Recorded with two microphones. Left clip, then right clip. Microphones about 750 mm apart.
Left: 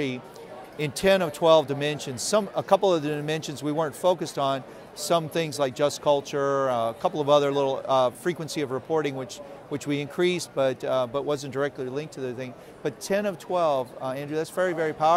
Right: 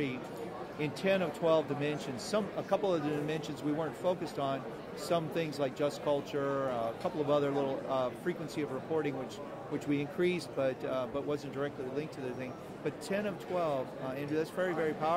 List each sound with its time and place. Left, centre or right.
0.7 s speech: left